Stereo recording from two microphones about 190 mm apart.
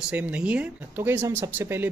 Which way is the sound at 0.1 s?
5° right (ahead or behind).